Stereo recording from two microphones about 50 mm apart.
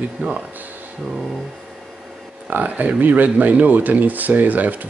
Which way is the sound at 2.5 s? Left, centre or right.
Right.